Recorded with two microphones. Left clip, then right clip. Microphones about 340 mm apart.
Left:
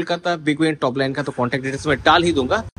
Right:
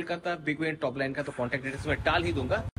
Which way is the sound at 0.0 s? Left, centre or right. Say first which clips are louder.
Left 11 dB; centre.